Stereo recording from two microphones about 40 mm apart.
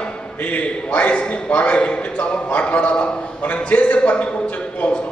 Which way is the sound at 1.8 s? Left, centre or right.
Left.